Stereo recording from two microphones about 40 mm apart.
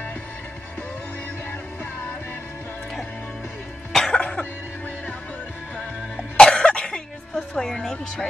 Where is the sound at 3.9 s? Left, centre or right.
Centre.